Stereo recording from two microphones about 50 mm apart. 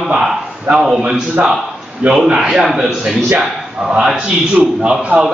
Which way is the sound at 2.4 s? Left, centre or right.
Centre.